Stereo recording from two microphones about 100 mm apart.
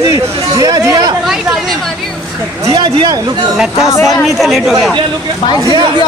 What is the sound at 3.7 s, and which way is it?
Speech, 70° left (ahead or behind).